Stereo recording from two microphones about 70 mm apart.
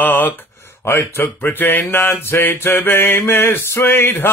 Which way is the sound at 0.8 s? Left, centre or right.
Left.